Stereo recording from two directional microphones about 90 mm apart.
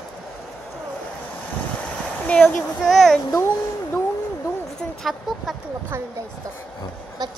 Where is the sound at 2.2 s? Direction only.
15° left (ahead or behind).